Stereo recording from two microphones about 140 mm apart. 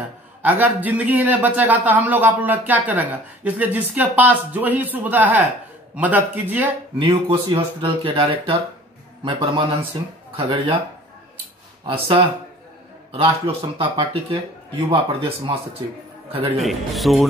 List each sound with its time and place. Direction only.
0.4 s a man's voice: 10° right (ahead or behind)
7.0 s speech: 40° right (ahead or behind)
11.8 s a man's voice: 40° right (ahead or behind)
16.6 s a man's voice: centre (ahead or behind)